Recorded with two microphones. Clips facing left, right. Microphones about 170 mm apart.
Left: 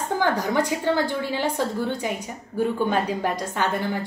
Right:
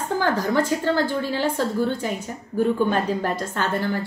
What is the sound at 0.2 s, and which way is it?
A woman's voice, 15° left (ahead or behind).